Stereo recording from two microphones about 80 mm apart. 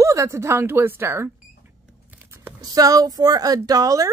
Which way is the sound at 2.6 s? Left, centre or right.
Right.